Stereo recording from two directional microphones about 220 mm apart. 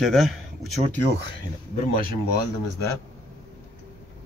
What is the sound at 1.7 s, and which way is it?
Speech, 40° left (ahead or behind).